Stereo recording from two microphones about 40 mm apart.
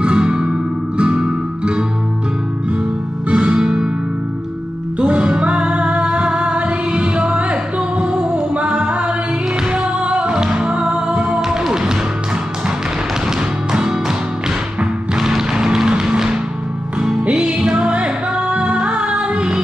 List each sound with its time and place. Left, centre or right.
0.0 s music: right
3.3 s music: right
4.9 s music: right
11.7 s music: centre
13.7 s music: centre
15.1 s music: centre
17.3 s music: right